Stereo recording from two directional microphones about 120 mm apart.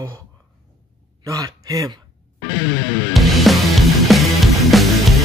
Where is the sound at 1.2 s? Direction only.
30° right (ahead or behind).